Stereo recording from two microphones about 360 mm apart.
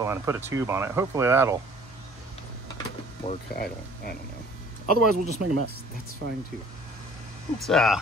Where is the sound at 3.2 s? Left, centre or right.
Left.